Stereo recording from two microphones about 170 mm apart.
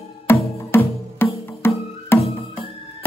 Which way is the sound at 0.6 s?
15° left (ahead or behind).